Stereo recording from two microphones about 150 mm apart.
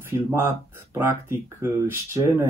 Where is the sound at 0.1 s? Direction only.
15° right (ahead or behind).